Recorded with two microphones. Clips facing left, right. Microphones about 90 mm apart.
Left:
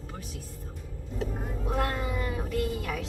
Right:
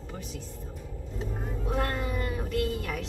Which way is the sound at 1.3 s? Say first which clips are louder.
Right 2 dB; centre (ahead or behind).